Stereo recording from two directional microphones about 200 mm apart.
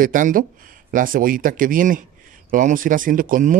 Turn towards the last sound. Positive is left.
turn(degrees=-45)  # may be behind; listen again after turning